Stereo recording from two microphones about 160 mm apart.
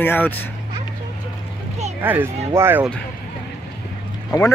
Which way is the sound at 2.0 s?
15° right (ahead or behind).